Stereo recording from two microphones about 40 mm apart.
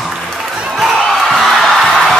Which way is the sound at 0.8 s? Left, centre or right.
Centre.